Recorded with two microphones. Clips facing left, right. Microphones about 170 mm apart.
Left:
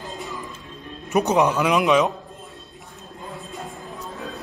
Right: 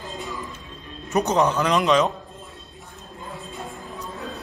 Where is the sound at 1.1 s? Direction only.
15° left (ahead or behind).